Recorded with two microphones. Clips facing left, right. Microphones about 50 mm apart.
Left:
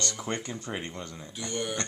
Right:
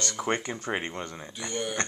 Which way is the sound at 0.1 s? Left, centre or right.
Right.